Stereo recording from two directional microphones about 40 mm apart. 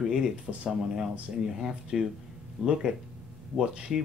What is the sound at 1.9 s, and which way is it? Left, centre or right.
Speech, centre.